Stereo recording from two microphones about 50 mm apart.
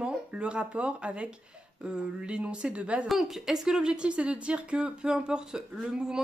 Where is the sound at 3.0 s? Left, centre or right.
Centre.